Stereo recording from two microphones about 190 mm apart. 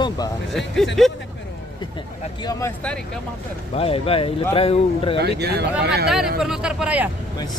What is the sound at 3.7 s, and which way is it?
Speech, 30° left (ahead or behind).